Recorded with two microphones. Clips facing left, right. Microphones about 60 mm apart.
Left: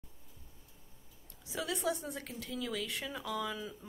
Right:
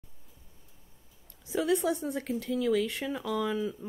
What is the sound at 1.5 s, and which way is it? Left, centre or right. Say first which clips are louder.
Speech: right 8 dB; right.